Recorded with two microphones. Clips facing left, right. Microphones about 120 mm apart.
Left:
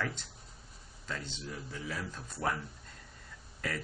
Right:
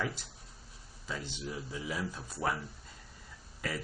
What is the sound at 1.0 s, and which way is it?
Speech, 10° right (ahead or behind).